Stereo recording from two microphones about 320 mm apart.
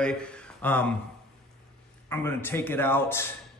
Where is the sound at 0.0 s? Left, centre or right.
Centre.